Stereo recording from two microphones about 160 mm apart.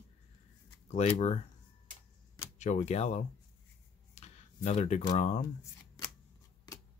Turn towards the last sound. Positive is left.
turn(degrees=20)  # may be behind; listen again after turning